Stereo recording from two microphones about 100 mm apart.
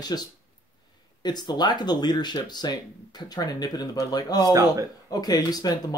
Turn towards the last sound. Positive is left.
turn(degrees=40)  # may be behind; listen again after turning